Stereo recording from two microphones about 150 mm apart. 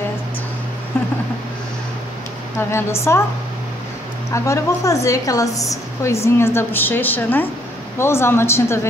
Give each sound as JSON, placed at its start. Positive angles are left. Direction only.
{"t": 0.9, "sound": "vehicle", "side_deg": 15}
{"t": 2.7, "sound": "a woman's voice", "side_deg": 20}
{"t": 4.3, "sound": "a woman's voice", "side_deg": 20}